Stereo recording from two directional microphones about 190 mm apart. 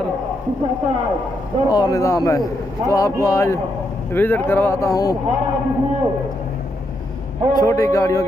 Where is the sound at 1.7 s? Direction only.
20° left (ahead or behind).